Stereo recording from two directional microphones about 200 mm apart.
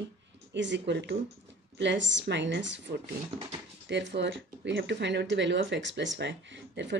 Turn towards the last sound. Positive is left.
turn(degrees=-65)  # may be behind; listen again after turning